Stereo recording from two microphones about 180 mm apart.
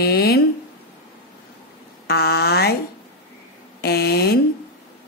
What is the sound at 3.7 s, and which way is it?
Speech, 65° left (ahead or behind).